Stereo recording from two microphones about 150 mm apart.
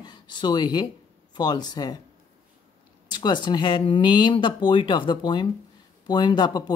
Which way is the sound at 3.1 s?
30° left (ahead or behind).